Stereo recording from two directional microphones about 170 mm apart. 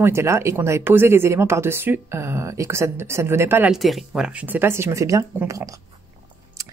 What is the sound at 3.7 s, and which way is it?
Speech, centre (ahead or behind).